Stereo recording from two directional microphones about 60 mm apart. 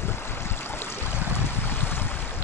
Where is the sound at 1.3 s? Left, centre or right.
Left.